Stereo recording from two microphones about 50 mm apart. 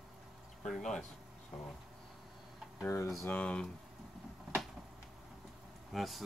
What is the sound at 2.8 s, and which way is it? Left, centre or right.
Speech, left.